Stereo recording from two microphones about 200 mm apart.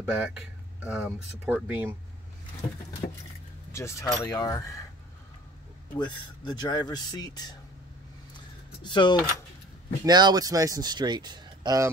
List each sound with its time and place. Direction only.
0.0 s speech: 10° right (ahead or behind)
3.7 s speech: 15° left (ahead or behind)
5.9 s speech: 20° left (ahead or behind)
8.8 s speech: 20° left (ahead or behind)
10.0 s speech: 20° right (ahead or behind)